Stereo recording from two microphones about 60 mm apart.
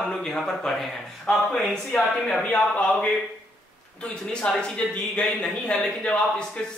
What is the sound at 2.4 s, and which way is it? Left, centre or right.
Speech, left.